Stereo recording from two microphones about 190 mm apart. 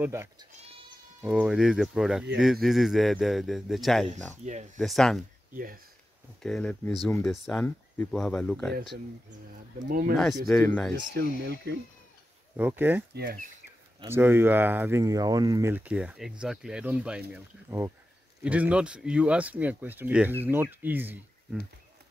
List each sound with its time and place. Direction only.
0.0 s speech: 15° right (ahead or behind)
4.5 s speech: 40° right (ahead or behind)
4.7 s speech: centre (ahead or behind)
6.4 s speech: 5° left (ahead or behind)
9.8 s speech: 50° right (ahead or behind)
10.6 s speech: 10° left (ahead or behind)
11.1 s speech: 60° right (ahead or behind)
12.5 s speech: 10° right (ahead or behind)
13.1 s speech: 50° right (ahead or behind)
14.0 s speech: 10° right (ahead or behind)